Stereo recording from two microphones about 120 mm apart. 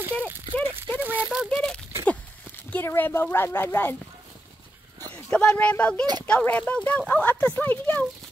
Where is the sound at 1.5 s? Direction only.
5° left (ahead or behind).